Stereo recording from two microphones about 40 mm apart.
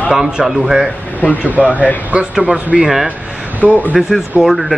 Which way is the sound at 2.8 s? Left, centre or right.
Centre.